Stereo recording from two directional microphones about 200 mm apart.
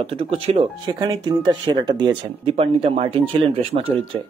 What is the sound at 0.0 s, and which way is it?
Speech, 30° right (ahead or behind).